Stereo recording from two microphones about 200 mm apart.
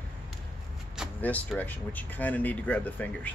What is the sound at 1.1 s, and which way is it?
Speech, 10° left (ahead or behind).